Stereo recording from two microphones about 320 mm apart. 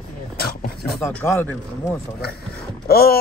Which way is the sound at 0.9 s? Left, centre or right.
Centre.